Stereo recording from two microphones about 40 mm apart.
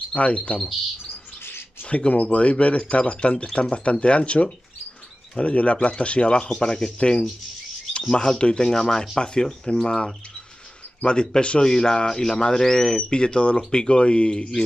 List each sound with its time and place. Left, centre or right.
0.1 s speech: left
1.9 s speech: left
6.5 s speech: centre